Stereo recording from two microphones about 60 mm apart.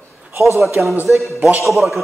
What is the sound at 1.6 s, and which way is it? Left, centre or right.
Speech, centre.